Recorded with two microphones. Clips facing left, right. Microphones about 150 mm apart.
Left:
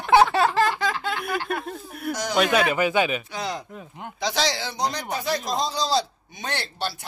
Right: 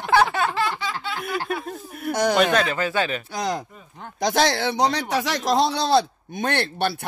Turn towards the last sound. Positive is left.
turn(degrees=-60)  # may be behind; listen again after turning